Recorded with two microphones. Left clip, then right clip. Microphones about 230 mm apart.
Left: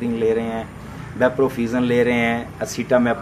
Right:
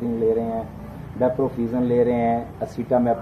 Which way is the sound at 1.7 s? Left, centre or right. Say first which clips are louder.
Left 1 dB; left.